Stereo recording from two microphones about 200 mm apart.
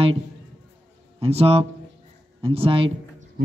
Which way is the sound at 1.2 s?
30° right (ahead or behind).